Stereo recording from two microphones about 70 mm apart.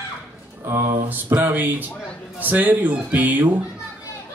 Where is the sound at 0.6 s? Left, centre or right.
Right.